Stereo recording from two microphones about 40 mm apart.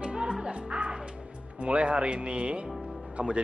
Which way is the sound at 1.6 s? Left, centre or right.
Right.